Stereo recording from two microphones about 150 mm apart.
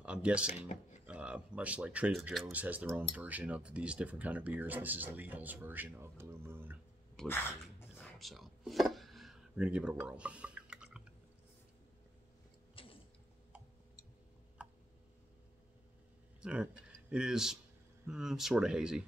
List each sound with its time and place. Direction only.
0.0 s speech: 5° right (ahead or behind)
0.5 s speech: 50° left (ahead or behind)
1.0 s speech: 10° right (ahead or behind)
2.5 s speech: 10° right (ahead or behind)
7.2 s a sound: 5° left (ahead or behind)
12.8 s mechanisms: 35° left (ahead or behind)
14.6 s tick: 10° right (ahead or behind)
16.3 s speech: 5° right (ahead or behind)